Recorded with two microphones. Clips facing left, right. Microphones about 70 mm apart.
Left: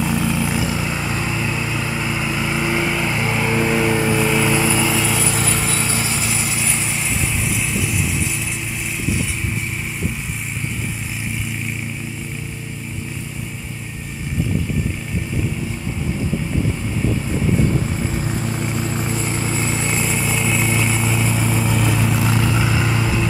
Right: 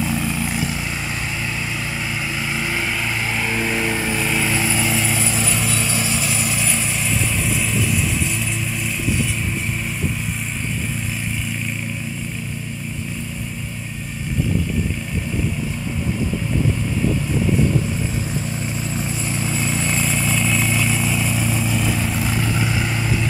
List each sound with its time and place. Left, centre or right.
0.0 s vehicle: left
5.0 s vehicle: left
5.5 s vehicle: left
18.4 s vehicle: left